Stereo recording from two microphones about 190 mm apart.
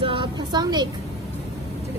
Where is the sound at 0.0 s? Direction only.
25° right (ahead or behind).